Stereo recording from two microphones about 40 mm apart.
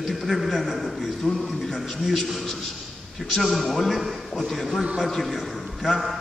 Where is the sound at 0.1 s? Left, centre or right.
Centre.